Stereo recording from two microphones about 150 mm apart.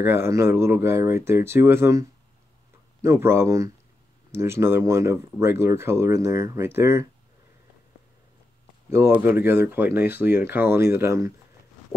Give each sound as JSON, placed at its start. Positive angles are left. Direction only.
{"t": 0.0, "sound": "speech", "side_deg": -15}
{"t": 8.9, "sound": "speech", "side_deg": -15}